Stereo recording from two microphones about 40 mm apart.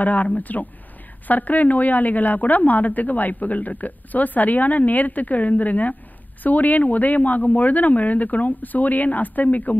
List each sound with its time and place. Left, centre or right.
0.0 s a woman's voice: left